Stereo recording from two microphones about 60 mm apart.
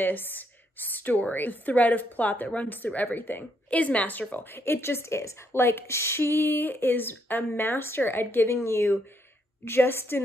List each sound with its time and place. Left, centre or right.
0.0 s a woman's voice: left
4.6 s a woman's voice: left